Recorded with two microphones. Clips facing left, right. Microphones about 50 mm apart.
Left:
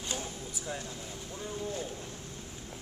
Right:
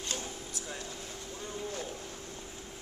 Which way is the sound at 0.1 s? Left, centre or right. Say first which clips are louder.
Left 3 dB; centre.